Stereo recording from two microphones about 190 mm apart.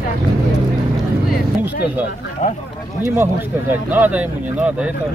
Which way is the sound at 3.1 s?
10° right (ahead or behind).